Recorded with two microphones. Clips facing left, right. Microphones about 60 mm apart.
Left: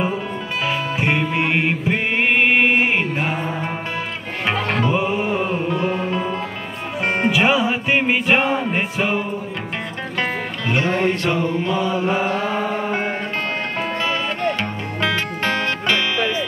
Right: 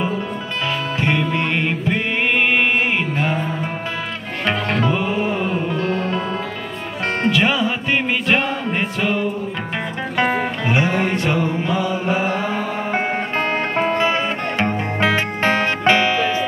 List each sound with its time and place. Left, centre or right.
0.7 s music: centre
4.5 s music: centre
10.1 s music: centre
12.1 s mantra: centre
13.7 s music: right